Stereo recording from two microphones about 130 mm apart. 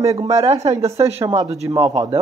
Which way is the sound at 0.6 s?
55° right (ahead or behind).